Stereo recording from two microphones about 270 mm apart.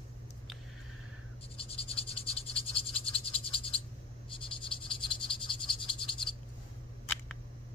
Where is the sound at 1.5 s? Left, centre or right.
Left.